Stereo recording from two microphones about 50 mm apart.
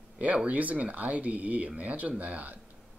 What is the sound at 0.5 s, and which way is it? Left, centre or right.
Speech, right.